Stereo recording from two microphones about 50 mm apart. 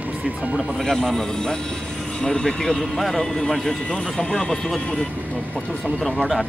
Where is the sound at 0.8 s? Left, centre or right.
Centre.